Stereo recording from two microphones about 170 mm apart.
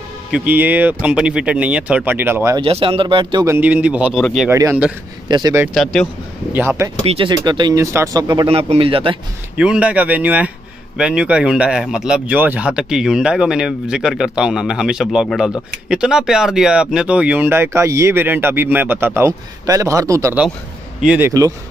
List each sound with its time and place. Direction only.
0.3 s speech: 10° right (ahead or behind)
2.5 s speech: 30° right (ahead or behind)
3.5 s speech: 10° right (ahead or behind)
4.5 s speech: 15° right (ahead or behind)
7.1 s speech: 30° right (ahead or behind)
8.5 s speech: 35° right (ahead or behind)
9.6 s speech: 5° right (ahead or behind)
21.0 s speech: 5° right (ahead or behind)